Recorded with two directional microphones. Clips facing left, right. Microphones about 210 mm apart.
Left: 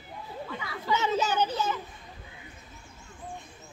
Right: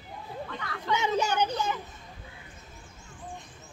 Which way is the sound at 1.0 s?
15° right (ahead or behind).